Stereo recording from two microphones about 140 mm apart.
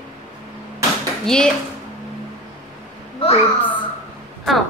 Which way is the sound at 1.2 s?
5° left (ahead or behind).